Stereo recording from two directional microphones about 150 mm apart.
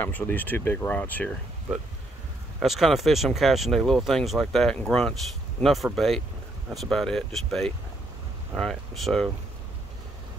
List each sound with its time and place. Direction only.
0.0 s speech: 10° left (ahead or behind)
2.6 s speech: centre (ahead or behind)